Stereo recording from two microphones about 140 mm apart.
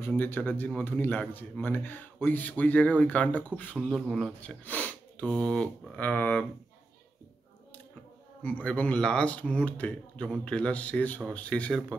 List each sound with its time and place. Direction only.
0.0 s a man's voice: 15° left (ahead or behind)
3.7 s speech: centre (ahead or behind)
8.4 s a man's voice: 10° left (ahead or behind)